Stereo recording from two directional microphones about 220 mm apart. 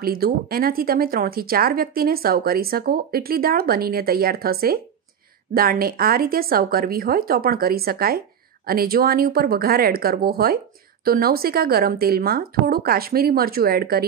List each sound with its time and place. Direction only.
0.0 s speech: 45° right (ahead or behind)